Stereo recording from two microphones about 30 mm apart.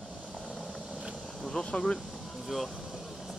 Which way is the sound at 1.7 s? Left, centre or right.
Left.